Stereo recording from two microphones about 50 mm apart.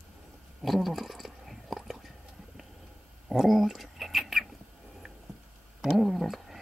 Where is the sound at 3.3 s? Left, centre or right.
Centre.